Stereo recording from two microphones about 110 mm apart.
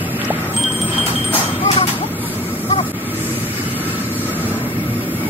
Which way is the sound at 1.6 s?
55° left (ahead or behind).